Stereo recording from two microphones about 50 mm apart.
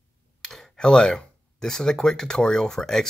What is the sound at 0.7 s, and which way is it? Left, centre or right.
Speech, centre.